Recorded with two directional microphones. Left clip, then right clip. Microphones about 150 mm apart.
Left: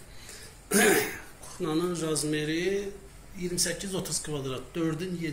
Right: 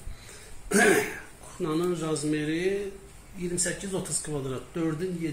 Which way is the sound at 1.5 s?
60° right (ahead or behind).